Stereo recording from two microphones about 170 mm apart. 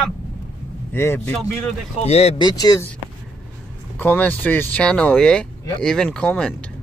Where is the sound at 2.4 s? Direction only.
25° left (ahead or behind).